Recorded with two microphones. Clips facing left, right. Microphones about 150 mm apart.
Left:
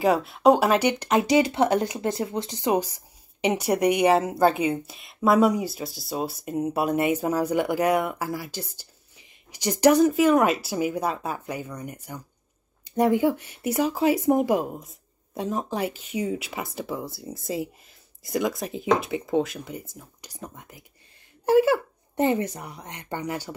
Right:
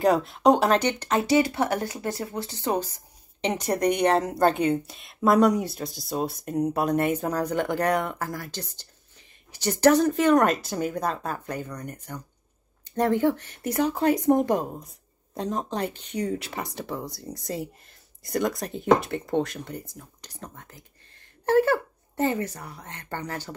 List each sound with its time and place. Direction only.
0.0 s speech: 5° left (ahead or behind)